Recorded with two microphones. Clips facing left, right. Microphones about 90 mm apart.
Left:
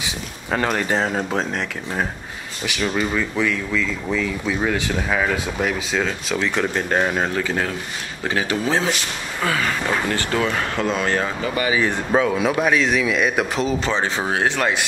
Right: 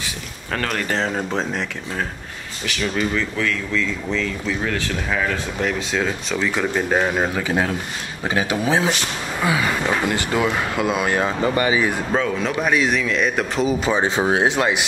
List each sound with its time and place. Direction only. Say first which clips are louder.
0.0 s speech: left 2 dB; 20° left (ahead or behind); by 1.7 s centre (ahead or behind)
2.6 s speech: even; 10° left (ahead or behind)
7.4 s speech: right 2 dB; 20° right (ahead or behind)
11.4 s speech: right 3 dB; 35° right (ahead or behind)
12.1 s speech: left 3 dB; 10° left (ahead or behind)
13.0 s speech: left 1 dB; 5° left (ahead or behind)
13.7 s speech: right 2 dB; 10° right (ahead or behind)